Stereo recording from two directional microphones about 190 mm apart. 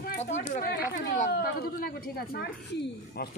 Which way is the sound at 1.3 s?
55° left (ahead or behind).